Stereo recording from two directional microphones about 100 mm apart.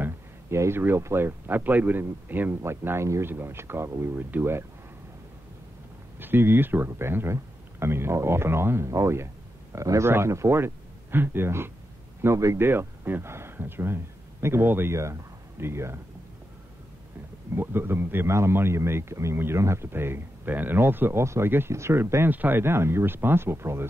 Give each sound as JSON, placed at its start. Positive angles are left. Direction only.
{"t": 0.0, "sound": "a man's voice", "side_deg": -25}
{"t": 6.1, "sound": "a man's voice", "side_deg": -20}
{"t": 17.6, "sound": "a man's voice", "side_deg": -25}